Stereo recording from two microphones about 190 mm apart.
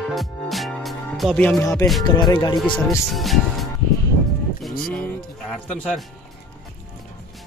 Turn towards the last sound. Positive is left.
turn(degrees=5)  # may be behind; listen again after turning